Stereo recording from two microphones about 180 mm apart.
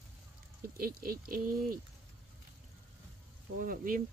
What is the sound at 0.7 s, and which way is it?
Speech, 55° right (ahead or behind).